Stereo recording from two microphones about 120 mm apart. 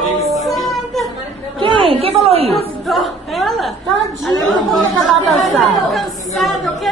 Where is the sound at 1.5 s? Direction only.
45° right (ahead or behind).